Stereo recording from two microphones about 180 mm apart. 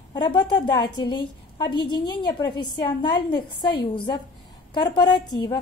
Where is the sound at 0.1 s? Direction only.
25° left (ahead or behind).